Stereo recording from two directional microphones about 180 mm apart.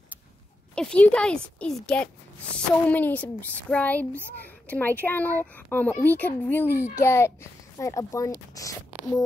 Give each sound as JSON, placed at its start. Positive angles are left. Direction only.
{"t": 0.7, "sound": "speech", "side_deg": 5}